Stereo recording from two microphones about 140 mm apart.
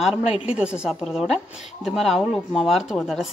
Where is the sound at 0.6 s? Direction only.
5° right (ahead or behind).